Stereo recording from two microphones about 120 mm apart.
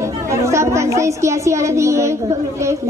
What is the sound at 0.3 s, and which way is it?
Speech, 25° right (ahead or behind).